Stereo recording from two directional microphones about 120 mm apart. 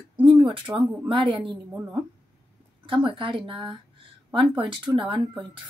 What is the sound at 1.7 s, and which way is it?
Speech, 10° right (ahead or behind).